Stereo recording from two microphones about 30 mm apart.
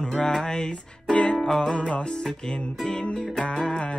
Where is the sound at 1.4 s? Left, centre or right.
Left.